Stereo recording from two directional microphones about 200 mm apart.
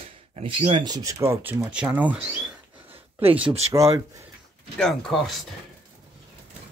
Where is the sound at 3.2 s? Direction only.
25° right (ahead or behind).